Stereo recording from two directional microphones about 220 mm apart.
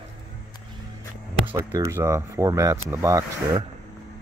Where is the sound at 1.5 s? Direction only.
10° right (ahead or behind).